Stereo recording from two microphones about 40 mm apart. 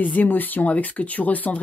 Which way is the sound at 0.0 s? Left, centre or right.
Left.